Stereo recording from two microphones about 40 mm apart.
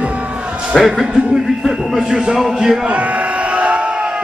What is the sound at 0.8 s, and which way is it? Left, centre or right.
Speech, centre.